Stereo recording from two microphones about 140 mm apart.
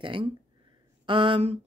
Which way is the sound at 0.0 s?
35° right (ahead or behind).